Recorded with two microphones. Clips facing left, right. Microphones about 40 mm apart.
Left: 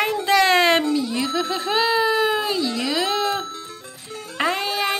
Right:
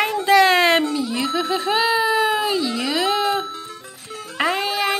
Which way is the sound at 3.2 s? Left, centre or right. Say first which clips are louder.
Right 2 dB; centre.